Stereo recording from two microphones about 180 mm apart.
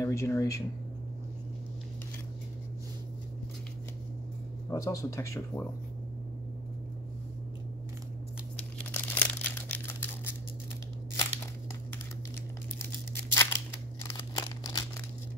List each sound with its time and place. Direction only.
0.0 s speech: 15° left (ahead or behind)
4.6 s speech: 20° left (ahead or behind)
8.9 s crumpling: 10° left (ahead or behind)
13.3 s scissors: 15° left (ahead or behind)
14.0 s a sound: 20° left (ahead or behind)